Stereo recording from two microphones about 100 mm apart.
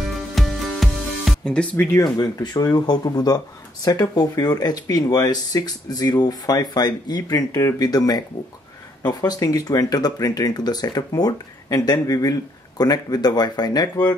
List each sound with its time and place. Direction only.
0.0 s music: centre (ahead or behind)
2.0 s speech: 40° left (ahead or behind)